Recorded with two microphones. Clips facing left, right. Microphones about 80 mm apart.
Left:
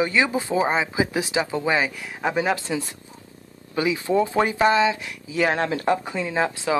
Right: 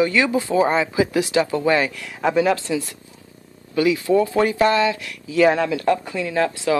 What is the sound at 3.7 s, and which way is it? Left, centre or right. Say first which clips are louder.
Speech: right 4 dB; left.